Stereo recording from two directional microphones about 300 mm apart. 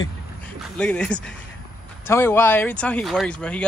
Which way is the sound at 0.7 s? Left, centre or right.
Centre.